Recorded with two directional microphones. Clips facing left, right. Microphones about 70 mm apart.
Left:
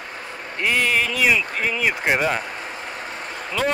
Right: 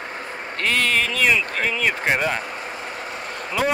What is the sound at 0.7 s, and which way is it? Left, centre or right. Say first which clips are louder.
Speech: left 1 dB; centre.